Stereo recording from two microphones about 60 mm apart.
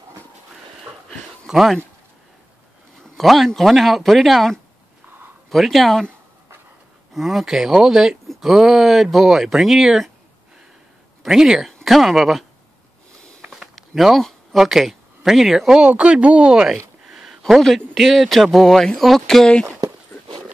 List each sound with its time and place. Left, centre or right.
1.5 s speech: centre
3.2 s speech: centre
7.2 s speech: centre
11.2 s speech: centre
13.5 s a sound: centre
14.2 s speech: centre
15.8 s speech: centre
17.1 s a man's voice: centre